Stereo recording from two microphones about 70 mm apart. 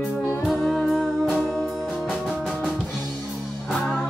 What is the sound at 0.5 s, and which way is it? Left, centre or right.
Music, centre.